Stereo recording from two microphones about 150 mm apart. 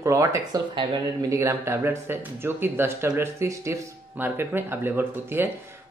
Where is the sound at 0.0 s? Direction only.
20° right (ahead or behind).